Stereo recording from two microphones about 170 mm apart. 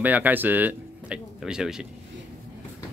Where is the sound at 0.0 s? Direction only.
10° right (ahead or behind).